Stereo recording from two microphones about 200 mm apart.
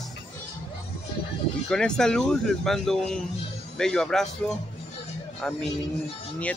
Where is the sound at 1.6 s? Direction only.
5° left (ahead or behind).